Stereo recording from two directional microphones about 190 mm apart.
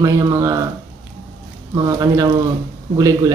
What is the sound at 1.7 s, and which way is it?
Speech, 20° right (ahead or behind).